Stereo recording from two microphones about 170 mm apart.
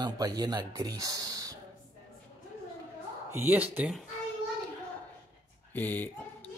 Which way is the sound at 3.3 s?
10° right (ahead or behind).